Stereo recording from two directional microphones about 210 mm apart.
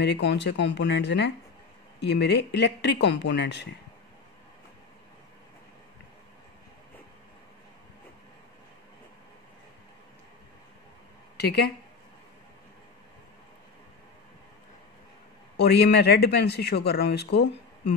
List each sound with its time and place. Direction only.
0.0 s speech: 55° left (ahead or behind)
11.3 s speech: 50° left (ahead or behind)
15.5 s speech: 50° left (ahead or behind)